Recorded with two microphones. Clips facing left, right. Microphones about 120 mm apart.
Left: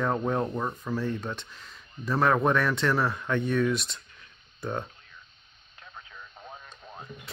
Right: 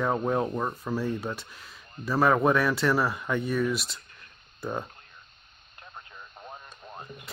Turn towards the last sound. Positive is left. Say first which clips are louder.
# right 1 dB
turn(degrees=-5)  # may be behind; listen again after turning